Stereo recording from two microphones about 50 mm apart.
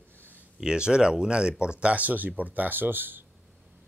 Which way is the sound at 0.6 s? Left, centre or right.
Centre.